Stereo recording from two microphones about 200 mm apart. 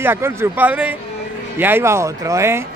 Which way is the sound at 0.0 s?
10° right (ahead or behind).